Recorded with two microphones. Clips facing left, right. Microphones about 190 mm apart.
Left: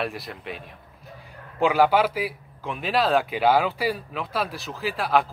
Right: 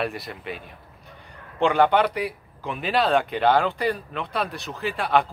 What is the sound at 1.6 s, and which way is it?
A man's voice, 5° left (ahead or behind).